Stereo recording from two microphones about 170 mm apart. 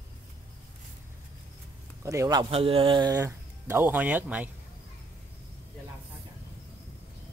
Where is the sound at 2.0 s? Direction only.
20° right (ahead or behind).